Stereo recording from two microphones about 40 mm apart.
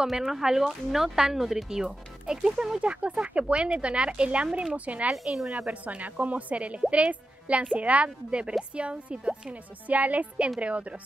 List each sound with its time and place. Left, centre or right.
0.0 s speech: centre; by 5.1 s right
5.1 s a woman's voice: centre
5.7 s speech: right
9.8 s speech: right